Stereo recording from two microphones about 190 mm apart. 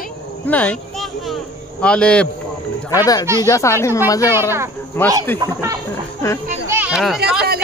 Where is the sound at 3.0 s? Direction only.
20° left (ahead or behind).